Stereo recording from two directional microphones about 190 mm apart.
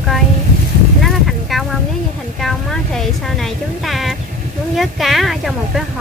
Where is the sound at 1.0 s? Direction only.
Centre (ahead or behind).